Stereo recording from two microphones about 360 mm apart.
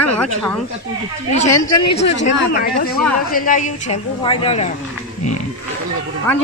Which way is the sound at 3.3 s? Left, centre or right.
Left.